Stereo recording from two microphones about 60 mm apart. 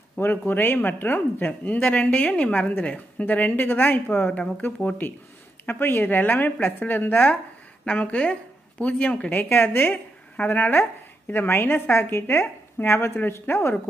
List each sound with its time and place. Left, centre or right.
0.2 s a woman's voice: left
9.3 s speech: left
10.3 s speech: left